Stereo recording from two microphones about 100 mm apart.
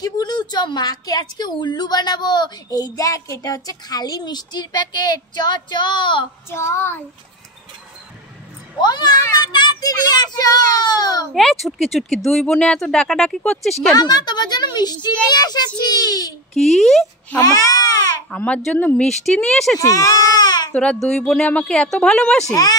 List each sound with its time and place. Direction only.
0.0 s a woman's voice: 45° left (ahead or behind)
6.5 s a child's voice: 25° left (ahead or behind)
8.8 s a woman's voice: 45° left (ahead or behind)
11.3 s speech: centre (ahead or behind)
13.9 s a woman's voice: 45° left (ahead or behind)
16.6 s speech: 5° left (ahead or behind)
17.4 s a child's voice: 40° left (ahead or behind)
18.3 s a woman's voice: 15° left (ahead or behind)
19.0 s speech: 5° left (ahead or behind)
19.8 s a child's voice: 35° left (ahead or behind)
20.7 s a woman's voice: 10° left (ahead or behind)
22.5 s a child's voice: 35° left (ahead or behind)